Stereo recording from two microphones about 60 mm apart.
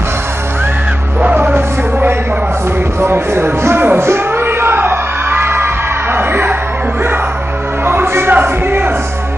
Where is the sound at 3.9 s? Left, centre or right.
Right.